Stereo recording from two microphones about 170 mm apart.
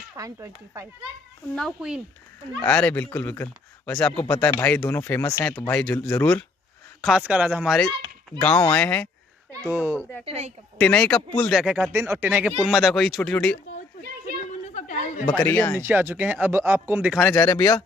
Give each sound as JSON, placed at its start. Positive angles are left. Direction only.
{"t": 0.1, "sound": "speech", "side_deg": -20}
{"t": 1.5, "sound": "speech", "side_deg": 0}
{"t": 7.0, "sound": "speech", "side_deg": -5}
{"t": 8.4, "sound": "speech", "side_deg": 10}
{"t": 9.7, "sound": "speech", "side_deg": -10}
{"t": 9.9, "sound": "speech", "side_deg": 10}
{"t": 10.2, "sound": "a woman's voice", "side_deg": -35}
{"t": 10.8, "sound": "speech", "side_deg": 5}
{"t": 11.6, "sound": "speech", "side_deg": -5}
{"t": 11.9, "sound": "speech", "side_deg": -15}
{"t": 14.4, "sound": "chatter", "side_deg": 45}
{"t": 15.2, "sound": "speech", "side_deg": 10}
{"t": 15.8, "sound": "speech", "side_deg": -10}
{"t": 17.2, "sound": "speech", "side_deg": 10}